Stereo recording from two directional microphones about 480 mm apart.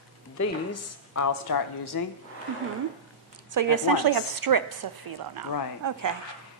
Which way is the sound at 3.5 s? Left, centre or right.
Right.